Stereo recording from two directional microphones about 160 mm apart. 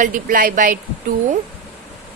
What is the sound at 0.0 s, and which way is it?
Speech, 55° right (ahead or behind).